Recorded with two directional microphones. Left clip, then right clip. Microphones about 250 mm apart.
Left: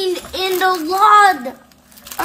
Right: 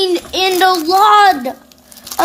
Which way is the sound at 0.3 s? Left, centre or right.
Right.